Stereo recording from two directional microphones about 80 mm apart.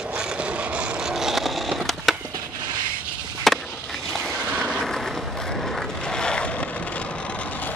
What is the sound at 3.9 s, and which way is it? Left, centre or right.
Vehicle, centre.